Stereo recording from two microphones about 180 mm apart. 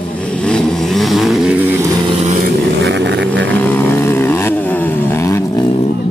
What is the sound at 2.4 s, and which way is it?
Vehicle, 65° right (ahead or behind).